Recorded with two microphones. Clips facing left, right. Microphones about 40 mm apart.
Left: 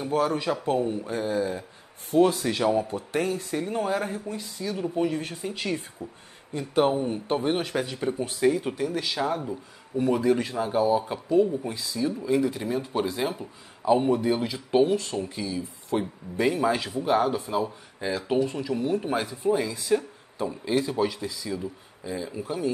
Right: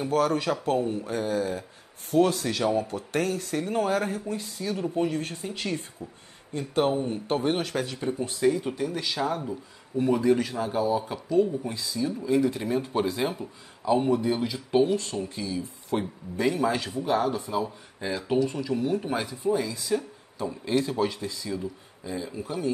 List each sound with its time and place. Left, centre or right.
0.1 s speech: centre
3.5 s speech: centre
5.1 s speech: centre
7.6 s speech: centre
12.6 s speech: centre
13.1 s speech: centre